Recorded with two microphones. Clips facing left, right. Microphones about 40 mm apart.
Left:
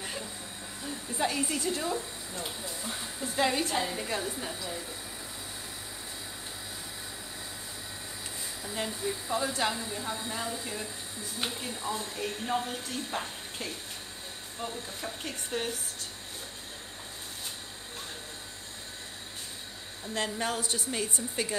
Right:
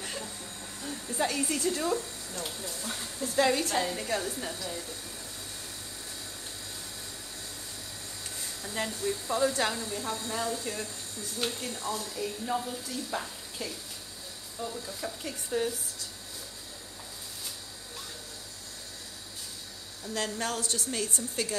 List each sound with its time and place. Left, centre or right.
0.0 s a sound: centre
0.8 s speech: centre
8.6 s speech: centre
12.2 s speech: left
20.2 s speech: centre